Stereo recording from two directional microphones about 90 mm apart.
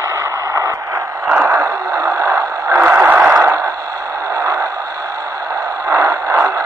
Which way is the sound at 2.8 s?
25° right (ahead or behind).